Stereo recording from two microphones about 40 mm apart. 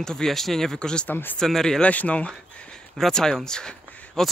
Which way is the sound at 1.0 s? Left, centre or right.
Left.